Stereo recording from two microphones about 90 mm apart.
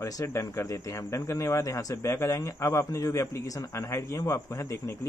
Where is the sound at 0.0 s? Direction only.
35° left (ahead or behind).